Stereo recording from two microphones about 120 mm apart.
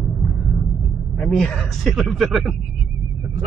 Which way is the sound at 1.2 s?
5° left (ahead or behind).